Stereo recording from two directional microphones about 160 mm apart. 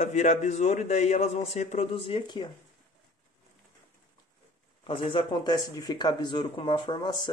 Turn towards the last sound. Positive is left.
turn(degrees=30)  # may be behind; listen again after turning